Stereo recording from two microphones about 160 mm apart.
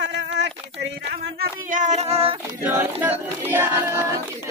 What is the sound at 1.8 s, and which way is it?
Child singing, 45° right (ahead or behind).